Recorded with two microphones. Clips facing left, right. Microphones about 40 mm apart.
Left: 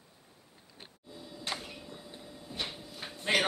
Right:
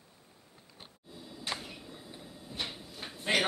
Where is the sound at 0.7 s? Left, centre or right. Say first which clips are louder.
Left 2 dB; centre.